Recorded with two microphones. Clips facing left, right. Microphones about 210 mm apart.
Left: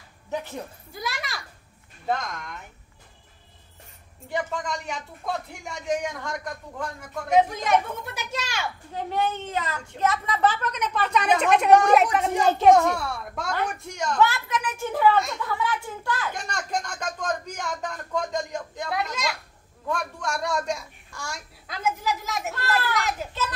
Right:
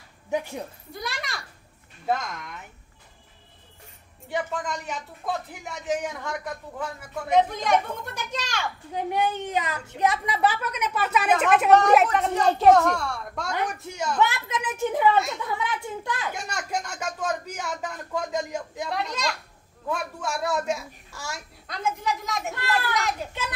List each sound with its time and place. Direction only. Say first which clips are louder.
0.3 s a woman's voice: right 3 dB; 15° right (ahead or behind)
0.9 s speech: left 1 dB; centre (ahead or behind)
4.3 s speech: even; centre (ahead or behind)
8.9 s a woman's voice: right 1 dB; 15° right (ahead or behind)
14.2 s speech: left 3 dB; 20° right (ahead or behind)
16.3 s a woman's voice: left 1 dB; 10° right (ahead or behind)
18.9 s speech: left 1 dB; 5° left (ahead or behind)
19.9 s speech: even; 5° right (ahead or behind)